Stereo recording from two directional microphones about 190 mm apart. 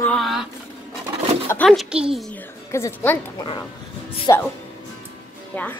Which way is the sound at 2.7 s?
15° left (ahead or behind).